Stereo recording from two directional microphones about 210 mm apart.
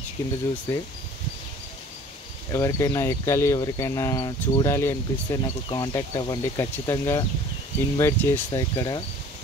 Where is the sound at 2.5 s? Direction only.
15° left (ahead or behind).